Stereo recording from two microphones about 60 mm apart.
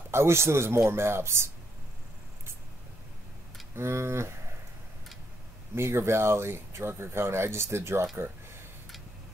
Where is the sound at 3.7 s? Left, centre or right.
Right.